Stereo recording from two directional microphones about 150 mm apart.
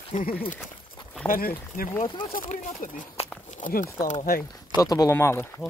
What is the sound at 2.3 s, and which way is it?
Speech, 60° left (ahead or behind).